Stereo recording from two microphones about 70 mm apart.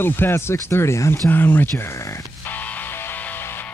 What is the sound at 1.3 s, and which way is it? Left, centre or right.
Speech, left.